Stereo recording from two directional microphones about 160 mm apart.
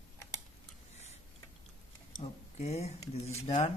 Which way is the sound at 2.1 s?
40° left (ahead or behind).